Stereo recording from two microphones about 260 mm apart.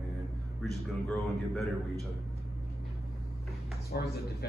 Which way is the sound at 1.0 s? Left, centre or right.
Centre.